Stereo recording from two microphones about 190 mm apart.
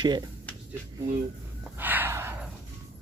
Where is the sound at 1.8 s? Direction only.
10° right (ahead or behind).